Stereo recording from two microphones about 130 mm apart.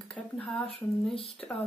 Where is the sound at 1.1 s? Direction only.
50° left (ahead or behind).